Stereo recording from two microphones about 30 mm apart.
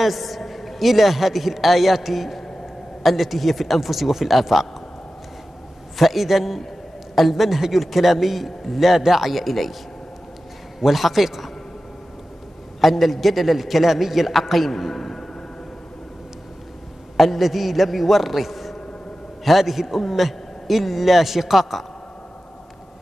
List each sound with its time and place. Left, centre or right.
0.0 s a man's voice: centre
5.9 s a man's voice: centre
8.9 s speech: centre
9.2 s a man's voice: centre
10.8 s a man's voice: centre
12.8 s a man's voice: centre
17.2 s a man's voice: centre